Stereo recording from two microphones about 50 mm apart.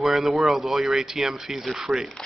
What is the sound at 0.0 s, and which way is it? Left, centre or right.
Speech, centre.